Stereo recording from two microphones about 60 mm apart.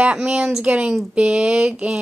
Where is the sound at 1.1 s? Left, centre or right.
Centre.